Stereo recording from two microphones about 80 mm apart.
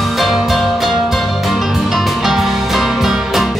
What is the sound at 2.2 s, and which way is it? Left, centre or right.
Music, centre.